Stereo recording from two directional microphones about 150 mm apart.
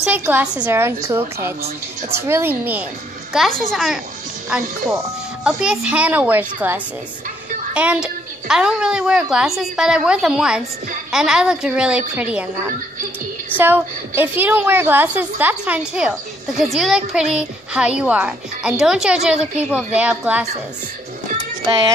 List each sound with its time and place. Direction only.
0.0 s a woman's voice: 10° right (ahead or behind)
3.3 s a woman's voice: centre (ahead or behind)